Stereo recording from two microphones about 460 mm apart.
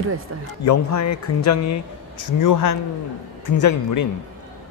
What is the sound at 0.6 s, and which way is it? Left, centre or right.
A man's voice, left.